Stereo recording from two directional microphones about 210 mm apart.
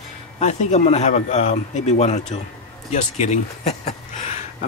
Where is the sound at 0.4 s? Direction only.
35° left (ahead or behind).